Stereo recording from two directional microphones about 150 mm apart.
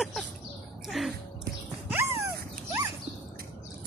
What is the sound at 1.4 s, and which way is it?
Music, 15° right (ahead or behind).